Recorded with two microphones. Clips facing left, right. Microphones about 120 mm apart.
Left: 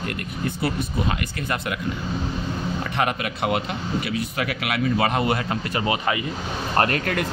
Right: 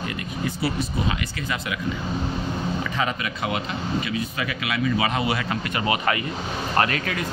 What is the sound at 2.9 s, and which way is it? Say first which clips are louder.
A man's voice: left 2 dB; 60° left (ahead or behind).